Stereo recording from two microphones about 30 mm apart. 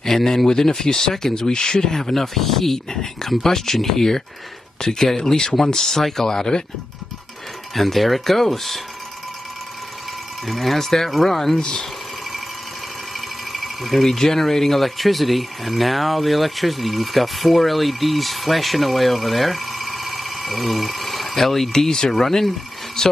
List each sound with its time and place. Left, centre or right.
0.0 s speech: centre
2.9 s speech: centre
5.8 s speech: centre
7.7 s speech: centre
10.4 s speech: centre
13.5 s a sound: centre
14.0 s speech: centre
19.9 s a sound: centre
20.6 s speech: centre
21.7 s speech: centre
23.0 s speech: centre